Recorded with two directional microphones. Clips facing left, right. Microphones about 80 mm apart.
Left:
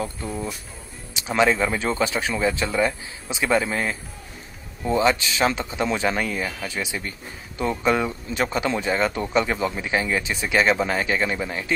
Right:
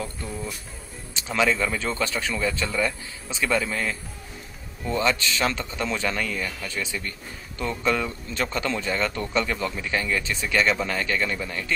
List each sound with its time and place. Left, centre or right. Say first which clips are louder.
0.0 s music: left 4 dB; centre
1.1 s speech: left 3 dB; centre